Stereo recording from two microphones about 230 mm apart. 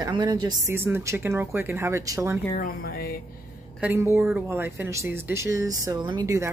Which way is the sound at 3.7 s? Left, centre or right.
Centre.